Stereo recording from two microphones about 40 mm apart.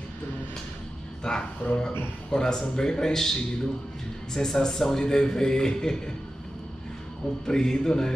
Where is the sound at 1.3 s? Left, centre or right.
Centre.